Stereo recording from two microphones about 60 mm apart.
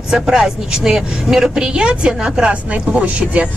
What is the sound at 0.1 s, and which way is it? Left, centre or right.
A man's voice, centre.